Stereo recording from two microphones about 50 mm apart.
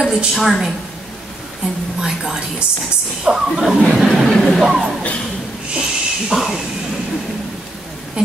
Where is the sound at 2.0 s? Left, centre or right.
Centre.